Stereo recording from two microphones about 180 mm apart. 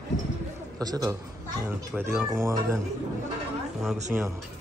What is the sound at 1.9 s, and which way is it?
Speech, 5° right (ahead or behind).